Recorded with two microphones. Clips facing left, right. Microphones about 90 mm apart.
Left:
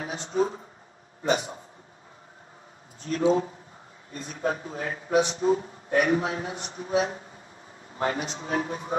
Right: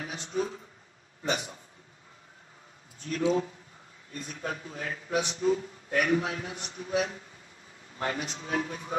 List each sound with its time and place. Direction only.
0.0 s a man's voice: 35° left (ahead or behind)
3.1 s speech: 35° left (ahead or behind)